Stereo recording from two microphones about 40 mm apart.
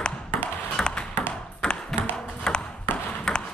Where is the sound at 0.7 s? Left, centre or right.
Left.